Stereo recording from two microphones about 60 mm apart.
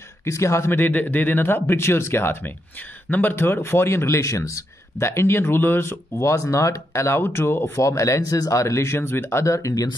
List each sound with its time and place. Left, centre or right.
0.2 s a man's voice: left
0.7 s a man's voice: left
7.6 s speech: left
8.9 s speech: left
9.4 s speech: left